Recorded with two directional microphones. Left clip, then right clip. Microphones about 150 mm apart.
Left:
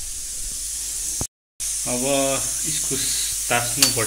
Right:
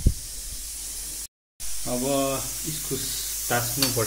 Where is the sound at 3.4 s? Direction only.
20° right (ahead or behind).